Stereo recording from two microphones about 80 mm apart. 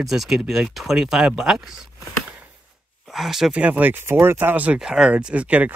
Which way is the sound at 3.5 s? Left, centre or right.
Centre.